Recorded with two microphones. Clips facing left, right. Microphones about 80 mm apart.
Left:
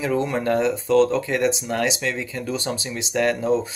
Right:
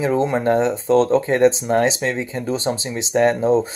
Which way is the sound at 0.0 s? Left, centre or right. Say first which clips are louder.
Right 4 dB; right.